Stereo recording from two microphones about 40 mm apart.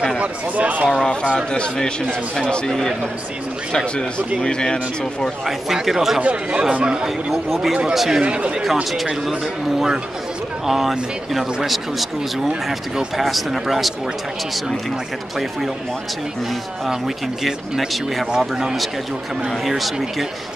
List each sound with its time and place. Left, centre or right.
0.2 s speech: right
1.3 s a man's voice: left
4.4 s a man's voice: left
5.7 s speech: centre
6.7 s speech: right
7.9 s speech: centre
8.2 s speech: right
10.7 s speech: centre
12.4 s speech: centre
13.2 s speech: centre
17.4 s speech: centre
19.6 s speech: centre